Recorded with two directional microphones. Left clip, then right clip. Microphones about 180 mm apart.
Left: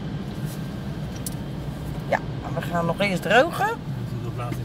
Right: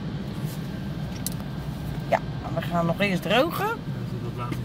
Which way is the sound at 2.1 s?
5° right (ahead or behind).